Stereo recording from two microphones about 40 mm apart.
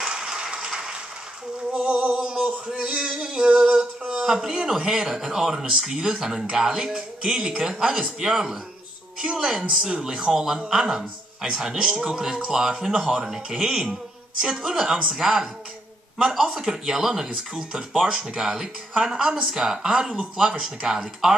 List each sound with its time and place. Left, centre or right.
0.0 s a sound: right
1.7 s speech: right
2.1 s male singing: right
11.4 s speech: right
14.4 s male singing: centre
16.5 s male singing: centre